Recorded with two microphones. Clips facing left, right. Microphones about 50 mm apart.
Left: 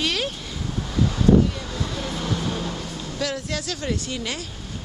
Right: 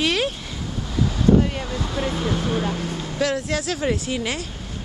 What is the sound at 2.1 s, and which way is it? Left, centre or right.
Speech, centre.